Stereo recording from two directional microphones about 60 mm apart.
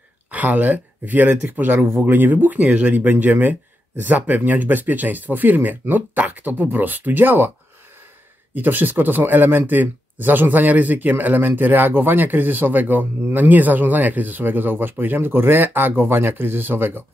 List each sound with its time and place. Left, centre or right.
0.3 s speech: right
8.5 s speech: right